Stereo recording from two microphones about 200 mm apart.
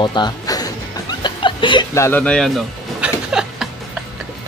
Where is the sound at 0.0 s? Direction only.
20° left (ahead or behind).